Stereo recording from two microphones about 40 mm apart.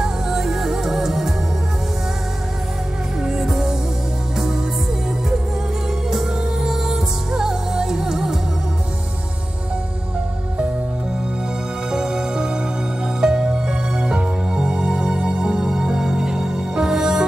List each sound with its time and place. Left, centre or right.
0.0 s music: centre
3.2 s music: centre
6.0 s music: centre
11.9 s music: centre